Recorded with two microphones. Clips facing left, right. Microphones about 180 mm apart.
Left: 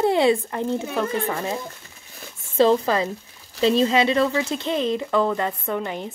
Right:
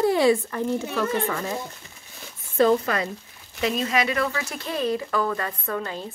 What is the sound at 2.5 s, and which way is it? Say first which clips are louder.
Speech: left 2 dB; 25° left (ahead or behind).